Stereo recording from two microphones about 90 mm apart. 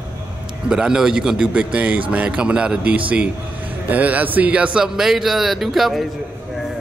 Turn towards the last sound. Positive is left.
turn(degrees=0)  # may be behind; listen again after turning